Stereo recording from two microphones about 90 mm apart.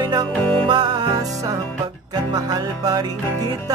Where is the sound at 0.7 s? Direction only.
65° right (ahead or behind).